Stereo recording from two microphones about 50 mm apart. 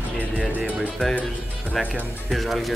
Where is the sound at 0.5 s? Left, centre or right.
Right.